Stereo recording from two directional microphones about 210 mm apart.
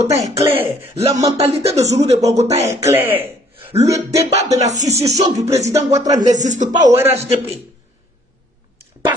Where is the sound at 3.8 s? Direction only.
30° right (ahead or behind).